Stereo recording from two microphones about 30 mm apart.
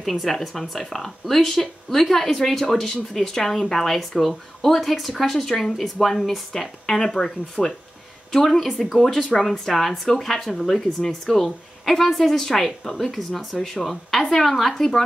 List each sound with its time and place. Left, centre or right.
0.0 s speech: centre